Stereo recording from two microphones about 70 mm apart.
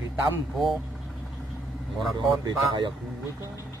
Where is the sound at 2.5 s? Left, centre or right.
Right.